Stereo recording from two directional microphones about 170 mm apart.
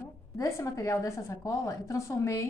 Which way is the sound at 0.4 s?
20° left (ahead or behind).